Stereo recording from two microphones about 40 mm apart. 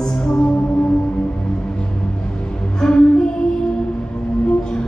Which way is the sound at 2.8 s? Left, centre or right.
Centre.